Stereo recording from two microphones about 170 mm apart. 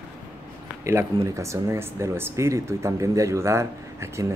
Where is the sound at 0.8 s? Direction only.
15° right (ahead or behind).